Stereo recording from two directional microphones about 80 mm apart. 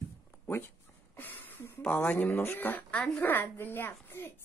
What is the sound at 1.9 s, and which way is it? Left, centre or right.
A woman's voice, left.